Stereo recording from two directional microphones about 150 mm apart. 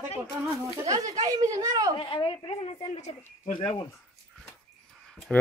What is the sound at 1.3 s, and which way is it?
Speech, 25° right (ahead or behind).